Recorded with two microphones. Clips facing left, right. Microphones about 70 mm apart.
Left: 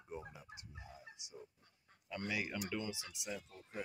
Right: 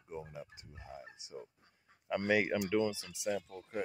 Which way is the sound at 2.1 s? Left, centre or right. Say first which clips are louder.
Right 10 dB; right.